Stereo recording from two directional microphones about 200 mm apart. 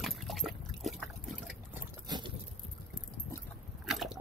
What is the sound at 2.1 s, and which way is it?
Vehicle, 20° right (ahead or behind).